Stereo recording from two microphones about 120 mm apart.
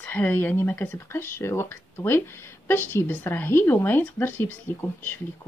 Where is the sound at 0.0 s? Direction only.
15° left (ahead or behind).